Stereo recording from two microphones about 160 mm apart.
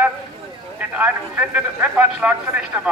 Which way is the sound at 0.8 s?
10° right (ahead or behind).